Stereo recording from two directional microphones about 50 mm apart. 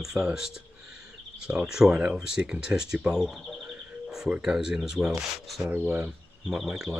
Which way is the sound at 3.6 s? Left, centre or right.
Centre.